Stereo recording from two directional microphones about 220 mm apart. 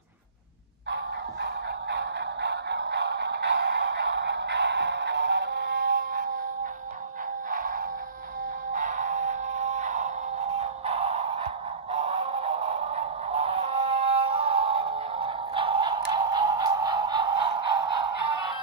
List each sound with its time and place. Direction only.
0.8 s music: 50° right (ahead or behind)
7.5 s music: 40° right (ahead or behind)
11.9 s synthetic singing: 30° right (ahead or behind)